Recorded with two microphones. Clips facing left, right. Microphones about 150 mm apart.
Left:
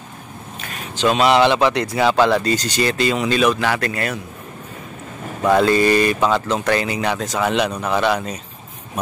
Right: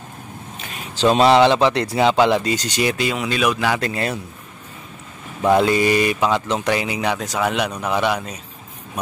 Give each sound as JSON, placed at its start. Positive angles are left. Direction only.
{"t": 0.9, "sound": "speech", "side_deg": -30}
{"t": 3.5, "sound": "speech", "side_deg": -15}
{"t": 5.4, "sound": "speech", "side_deg": -20}